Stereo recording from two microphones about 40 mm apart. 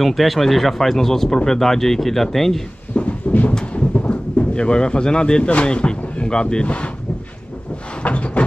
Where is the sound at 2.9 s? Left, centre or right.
Left.